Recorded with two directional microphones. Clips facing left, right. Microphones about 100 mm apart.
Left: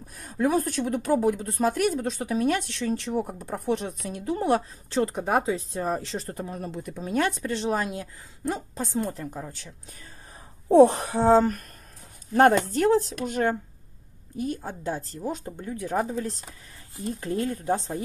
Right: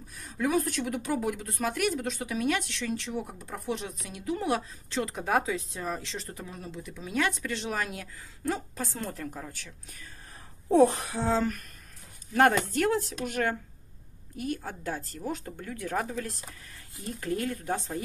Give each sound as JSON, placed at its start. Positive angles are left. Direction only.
{"t": 0.2, "sound": "a woman's voice", "side_deg": 40}